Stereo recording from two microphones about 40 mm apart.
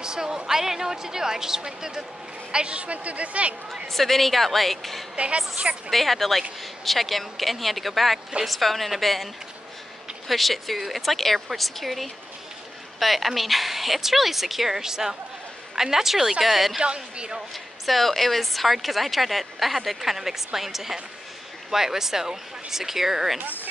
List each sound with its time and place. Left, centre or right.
0.0 s speech: centre
2.5 s speech: right
3.8 s a woman's voice: centre
5.1 s speech: right
5.9 s a woman's voice: centre
16.8 s speech: right
17.8 s a woman's voice: centre